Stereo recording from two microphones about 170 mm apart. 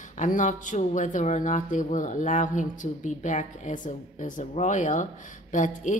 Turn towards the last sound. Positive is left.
turn(degrees=50)  # may be behind; listen again after turning